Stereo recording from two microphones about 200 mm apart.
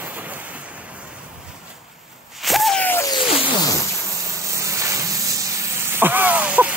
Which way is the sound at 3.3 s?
25° left (ahead or behind).